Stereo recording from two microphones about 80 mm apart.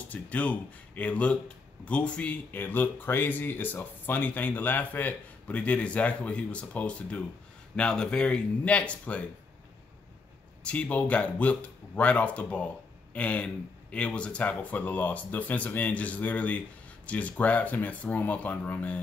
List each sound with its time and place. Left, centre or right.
0.1 s speech: centre
10.6 s speech: centre